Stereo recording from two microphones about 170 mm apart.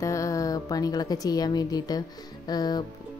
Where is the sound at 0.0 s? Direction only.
20° left (ahead or behind).